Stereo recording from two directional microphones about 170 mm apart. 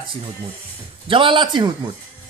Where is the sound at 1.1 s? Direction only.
30° right (ahead or behind).